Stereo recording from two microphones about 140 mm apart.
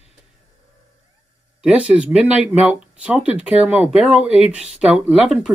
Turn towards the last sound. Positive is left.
turn(degrees=-5)  # may be behind; listen again after turning